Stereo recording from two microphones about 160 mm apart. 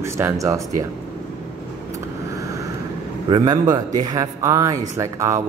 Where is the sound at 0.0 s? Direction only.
20° right (ahead or behind).